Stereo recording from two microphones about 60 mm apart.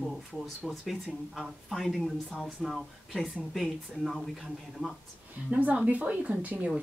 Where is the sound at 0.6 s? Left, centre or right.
Centre.